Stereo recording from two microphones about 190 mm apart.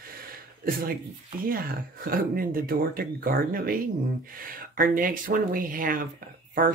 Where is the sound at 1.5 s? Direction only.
50° right (ahead or behind).